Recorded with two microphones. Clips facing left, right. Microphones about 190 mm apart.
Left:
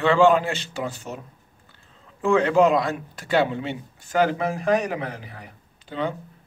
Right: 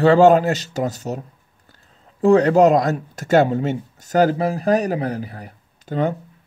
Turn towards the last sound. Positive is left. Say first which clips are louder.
# right 6 dB
turn(degrees=-45)  # may be behind; listen again after turning